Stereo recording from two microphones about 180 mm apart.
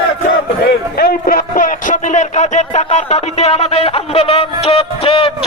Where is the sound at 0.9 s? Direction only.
55° left (ahead or behind).